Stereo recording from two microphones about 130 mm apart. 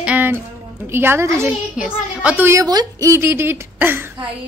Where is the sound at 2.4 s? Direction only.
25° right (ahead or behind).